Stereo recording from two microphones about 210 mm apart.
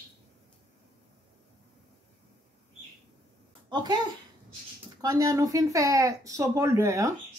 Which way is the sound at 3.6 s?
20° right (ahead or behind).